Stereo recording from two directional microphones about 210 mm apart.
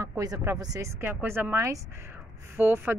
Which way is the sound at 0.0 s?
15° right (ahead or behind).